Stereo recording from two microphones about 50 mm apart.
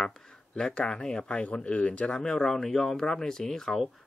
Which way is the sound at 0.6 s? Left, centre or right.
Centre.